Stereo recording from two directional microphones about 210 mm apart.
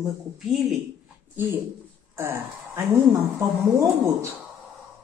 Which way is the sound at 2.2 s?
10° right (ahead or behind).